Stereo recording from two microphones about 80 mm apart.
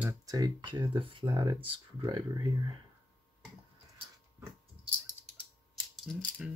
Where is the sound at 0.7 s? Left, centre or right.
Right.